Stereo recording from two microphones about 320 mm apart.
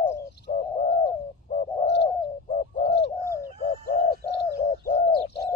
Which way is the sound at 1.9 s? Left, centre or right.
Left.